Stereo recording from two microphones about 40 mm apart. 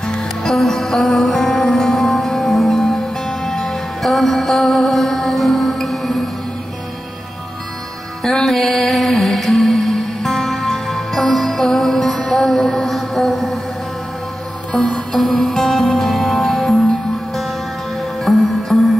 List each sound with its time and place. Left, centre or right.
0.0 s music: centre
8.2 s music: centre
12.0 s music: left
12.4 s music: centre
14.7 s music: left
15.3 s music: centre
16.1 s music: centre
18.2 s music: centre